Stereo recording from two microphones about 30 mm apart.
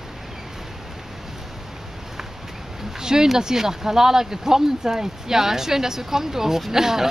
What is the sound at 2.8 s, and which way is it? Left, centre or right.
Speech, centre.